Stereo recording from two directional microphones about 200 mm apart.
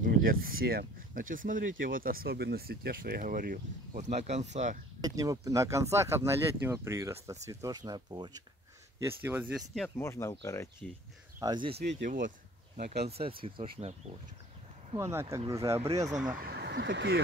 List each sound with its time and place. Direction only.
0.0 s speech: 45° right (ahead or behind)
5.0 s speech: 15° right (ahead or behind)
9.9 s speech: 15° left (ahead or behind)
11.3 s speech: 20° right (ahead or behind)
11.9 s speech: 40° right (ahead or behind)
13.1 s speech: 25° right (ahead or behind)
15.0 s speech: 15° right (ahead or behind)
16.3 s speech: 50° right (ahead or behind)